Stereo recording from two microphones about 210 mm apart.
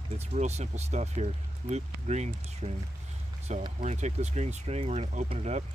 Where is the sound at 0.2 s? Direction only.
30° right (ahead or behind).